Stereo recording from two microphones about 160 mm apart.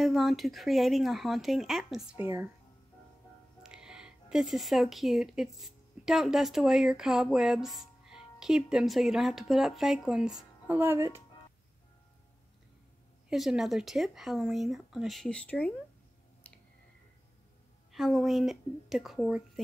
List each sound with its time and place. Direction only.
0.0 s speech: centre (ahead or behind)
2.1 s speech: 15° right (ahead or behind)
3.6 s speech: 5° right (ahead or behind)
10.8 s speech: 15° right (ahead or behind)
13.3 s speech: centre (ahead or behind)
17.9 s speech: centre (ahead or behind)